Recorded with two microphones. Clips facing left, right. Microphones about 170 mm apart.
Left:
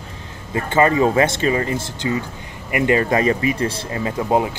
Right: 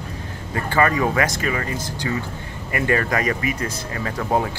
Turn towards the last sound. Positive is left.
turn(degrees=15)  # may be behind; listen again after turning